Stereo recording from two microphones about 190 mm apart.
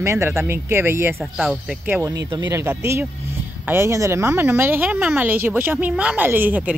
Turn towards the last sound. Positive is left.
turn(degrees=-10)  # may be behind; listen again after turning